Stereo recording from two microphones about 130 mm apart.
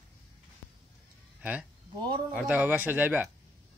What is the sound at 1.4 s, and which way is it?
Speech, 10° right (ahead or behind).